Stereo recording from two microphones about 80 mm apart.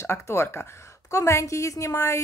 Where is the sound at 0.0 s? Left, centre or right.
Left.